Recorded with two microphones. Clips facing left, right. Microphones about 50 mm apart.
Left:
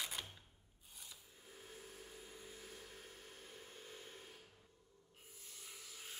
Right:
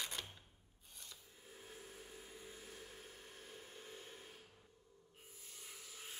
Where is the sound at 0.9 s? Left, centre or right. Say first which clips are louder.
Even; centre.